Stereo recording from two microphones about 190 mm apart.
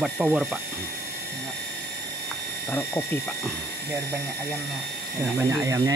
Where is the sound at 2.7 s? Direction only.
10° left (ahead or behind).